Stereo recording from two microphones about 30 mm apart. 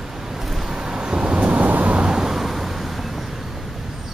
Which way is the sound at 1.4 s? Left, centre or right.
Right.